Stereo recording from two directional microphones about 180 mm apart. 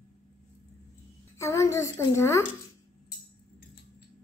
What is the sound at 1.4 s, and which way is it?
A child's voice, 15° left (ahead or behind).